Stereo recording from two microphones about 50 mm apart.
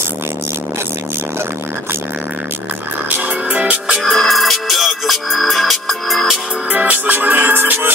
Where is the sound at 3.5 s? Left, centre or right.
Right.